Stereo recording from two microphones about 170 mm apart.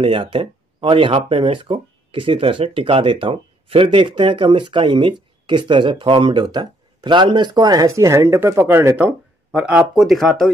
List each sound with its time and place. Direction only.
0.0 s speech: 30° right (ahead or behind); by 10.3 s centre (ahead or behind)